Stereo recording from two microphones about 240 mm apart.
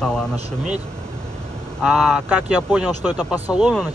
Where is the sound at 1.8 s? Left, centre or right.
Centre.